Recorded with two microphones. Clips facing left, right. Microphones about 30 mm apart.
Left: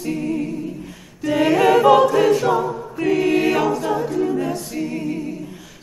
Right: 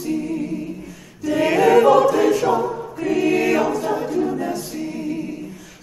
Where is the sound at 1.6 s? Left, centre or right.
Centre.